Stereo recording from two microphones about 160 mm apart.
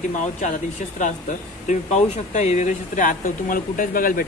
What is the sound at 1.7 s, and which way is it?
Speech, 45° left (ahead or behind).